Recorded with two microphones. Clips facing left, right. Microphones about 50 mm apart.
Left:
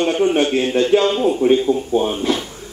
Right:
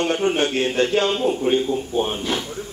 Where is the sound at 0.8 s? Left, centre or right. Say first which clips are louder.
Left 1 dB; right.